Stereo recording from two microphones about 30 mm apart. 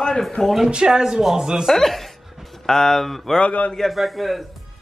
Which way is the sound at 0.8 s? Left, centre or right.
Centre.